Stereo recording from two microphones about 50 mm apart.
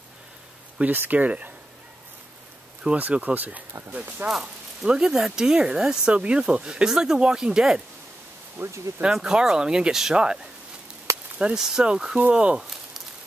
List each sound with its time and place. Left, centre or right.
0.7 s speech: right
3.0 s speech: right
4.3 s speech: centre
8.6 s speech: right
9.0 s speech: centre